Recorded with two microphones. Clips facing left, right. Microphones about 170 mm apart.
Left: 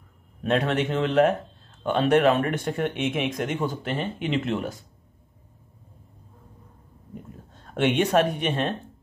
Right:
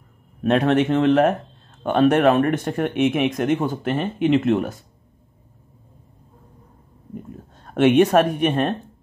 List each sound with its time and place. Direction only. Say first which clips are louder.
0.4 s speech: right 6 dB; 60° right (ahead or behind)
7.7 s speech: right 6 dB; 60° right (ahead or behind)